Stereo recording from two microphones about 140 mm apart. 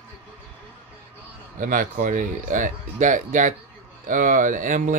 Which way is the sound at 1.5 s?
70° right (ahead or behind).